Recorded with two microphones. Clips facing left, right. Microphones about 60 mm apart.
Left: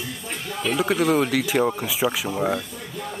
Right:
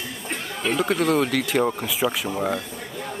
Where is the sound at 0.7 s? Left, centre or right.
Centre.